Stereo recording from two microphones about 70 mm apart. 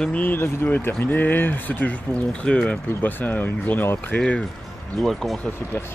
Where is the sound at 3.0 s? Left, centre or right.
Left.